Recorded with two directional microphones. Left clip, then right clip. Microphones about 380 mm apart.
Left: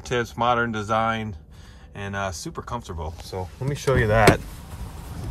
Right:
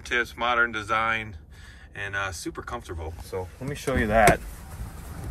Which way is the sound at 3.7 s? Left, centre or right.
Left.